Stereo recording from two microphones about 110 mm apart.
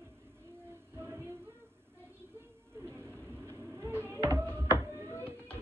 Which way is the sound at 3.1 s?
15° left (ahead or behind).